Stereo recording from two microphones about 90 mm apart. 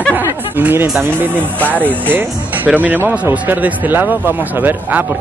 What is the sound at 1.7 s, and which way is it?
Speech, 20° right (ahead or behind).